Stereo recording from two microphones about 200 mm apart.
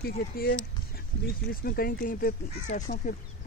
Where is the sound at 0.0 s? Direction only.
50° left (ahead or behind).